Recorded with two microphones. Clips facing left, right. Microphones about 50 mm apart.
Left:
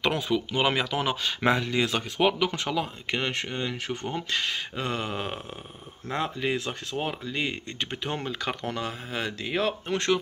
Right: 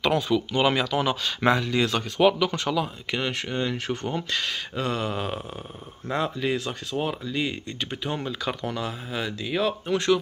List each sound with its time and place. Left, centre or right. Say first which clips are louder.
0.0 s speech: right 3 dB; centre
3.4 s speech: right 4 dB; centre; by 10.1 s left